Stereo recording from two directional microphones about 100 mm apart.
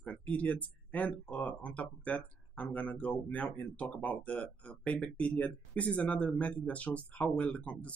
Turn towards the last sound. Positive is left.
turn(degrees=15)  # may be behind; listen again after turning